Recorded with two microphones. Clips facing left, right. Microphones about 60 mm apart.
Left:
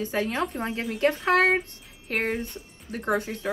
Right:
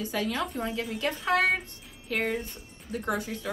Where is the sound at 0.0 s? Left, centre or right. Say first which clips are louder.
Left 3 dB; left.